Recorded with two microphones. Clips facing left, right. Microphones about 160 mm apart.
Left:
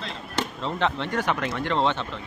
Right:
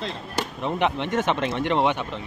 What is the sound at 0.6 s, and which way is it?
Speech, 15° right (ahead or behind).